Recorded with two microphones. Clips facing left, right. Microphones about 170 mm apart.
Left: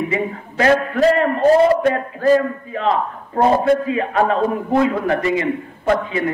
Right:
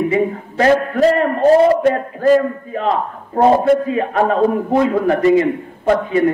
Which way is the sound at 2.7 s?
40° right (ahead or behind).